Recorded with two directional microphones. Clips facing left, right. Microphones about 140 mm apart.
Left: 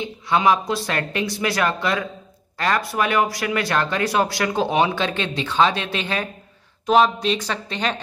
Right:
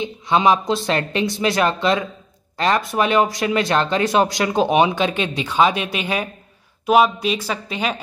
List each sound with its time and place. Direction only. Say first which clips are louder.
0.0 s speech: right 2 dB; 20° right (ahead or behind)